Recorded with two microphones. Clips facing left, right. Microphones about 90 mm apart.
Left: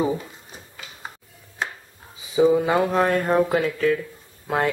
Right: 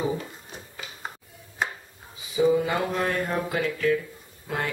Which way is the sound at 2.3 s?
30° left (ahead or behind).